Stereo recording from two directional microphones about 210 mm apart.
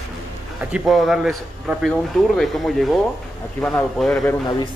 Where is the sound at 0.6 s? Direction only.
5° right (ahead or behind).